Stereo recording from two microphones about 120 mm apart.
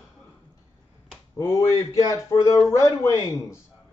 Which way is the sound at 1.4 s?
25° left (ahead or behind).